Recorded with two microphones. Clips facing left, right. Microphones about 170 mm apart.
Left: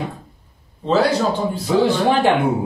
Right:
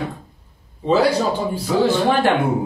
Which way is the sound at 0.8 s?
10° right (ahead or behind).